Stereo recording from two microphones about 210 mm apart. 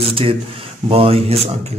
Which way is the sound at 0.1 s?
25° right (ahead or behind).